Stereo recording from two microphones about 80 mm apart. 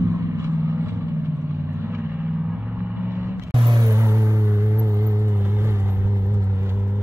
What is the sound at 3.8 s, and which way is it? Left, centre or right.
Music, right.